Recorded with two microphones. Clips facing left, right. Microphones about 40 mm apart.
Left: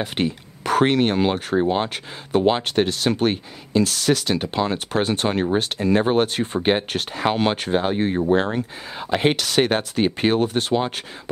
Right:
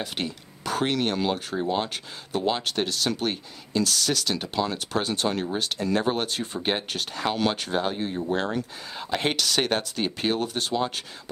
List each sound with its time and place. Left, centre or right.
0.0 s speech: left